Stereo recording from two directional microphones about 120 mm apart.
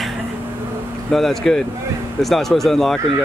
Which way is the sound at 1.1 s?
Centre (ahead or behind).